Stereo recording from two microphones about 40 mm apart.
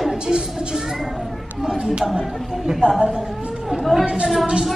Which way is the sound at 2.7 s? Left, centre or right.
Right.